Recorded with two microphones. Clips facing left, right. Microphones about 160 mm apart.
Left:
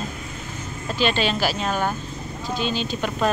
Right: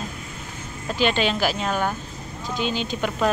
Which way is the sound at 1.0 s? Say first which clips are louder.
Even; 15° right (ahead or behind).